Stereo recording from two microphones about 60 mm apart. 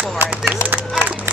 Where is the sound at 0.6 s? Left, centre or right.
Right.